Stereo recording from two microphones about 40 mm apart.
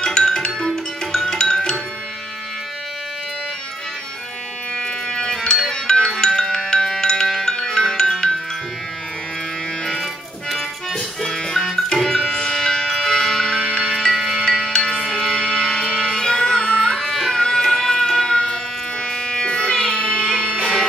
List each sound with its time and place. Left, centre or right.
0.0 s tabla: centre
1.1 s music: centre
4.7 s music: centre
10.5 s music: centre